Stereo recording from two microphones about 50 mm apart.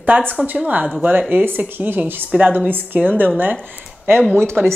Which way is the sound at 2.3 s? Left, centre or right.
Right.